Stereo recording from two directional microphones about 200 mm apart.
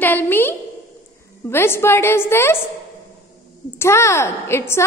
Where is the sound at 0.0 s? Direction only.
10° left (ahead or behind).